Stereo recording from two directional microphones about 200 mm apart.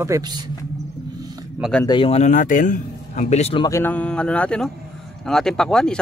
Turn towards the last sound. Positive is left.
turn(degrees=5)  # may be behind; listen again after turning